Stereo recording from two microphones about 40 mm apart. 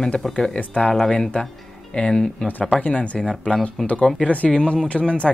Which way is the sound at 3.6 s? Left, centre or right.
Left.